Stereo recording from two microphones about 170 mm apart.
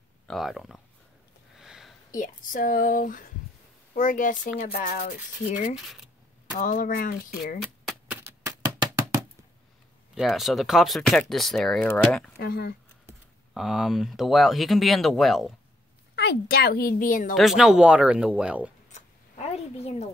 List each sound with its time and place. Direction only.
0.3 s speech: centre (ahead or behind)
1.6 s a sound: centre (ahead or behind)
2.1 s speech: 50° left (ahead or behind)
6.6 s speech: 55° left (ahead or behind)
8.1 s typewriter: 10° right (ahead or behind)
10.1 s speech: centre (ahead or behind)
12.4 s speech: 65° left (ahead or behind)
13.5 s speech: centre (ahead or behind)
16.2 s speech: 70° left (ahead or behind); by 17.4 s 50° left (ahead or behind)
17.4 s speech: centre (ahead or behind)
18.9 s a sound: 40° left (ahead or behind)